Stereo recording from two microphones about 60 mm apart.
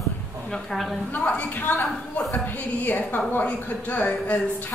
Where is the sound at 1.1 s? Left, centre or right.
Left.